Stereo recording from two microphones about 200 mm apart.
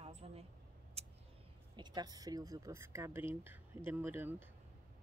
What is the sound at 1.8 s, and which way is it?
Speech, 20° right (ahead or behind).